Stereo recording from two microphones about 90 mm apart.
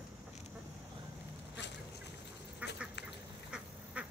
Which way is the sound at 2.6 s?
15° right (ahead or behind).